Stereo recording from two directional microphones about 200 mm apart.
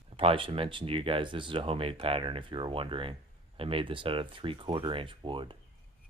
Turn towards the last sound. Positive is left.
turn(degrees=-25)  # may be behind; listen again after turning